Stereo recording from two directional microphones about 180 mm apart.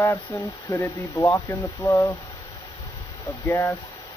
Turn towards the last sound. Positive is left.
turn(degrees=15)  # may be behind; listen again after turning